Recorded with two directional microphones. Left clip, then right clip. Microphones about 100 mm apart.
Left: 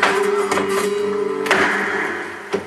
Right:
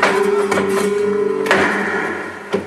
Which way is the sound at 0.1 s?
15° left (ahead or behind).